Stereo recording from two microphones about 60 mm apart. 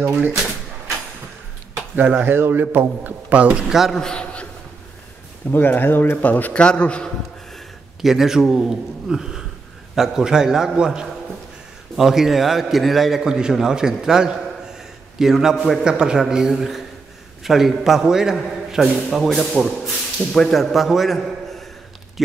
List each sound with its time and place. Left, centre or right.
0.0 s speech: right
2.0 s speech: right
3.6 s a man's voice: centre
3.9 s a man's voice: centre
5.5 s a man's voice: left
6.5 s a man's voice: centre
7.5 s a man's voice: centre
19.7 s a sound: centre
20.3 s a man's voice: centre